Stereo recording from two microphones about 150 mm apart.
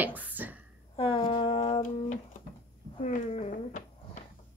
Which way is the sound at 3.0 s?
50° left (ahead or behind).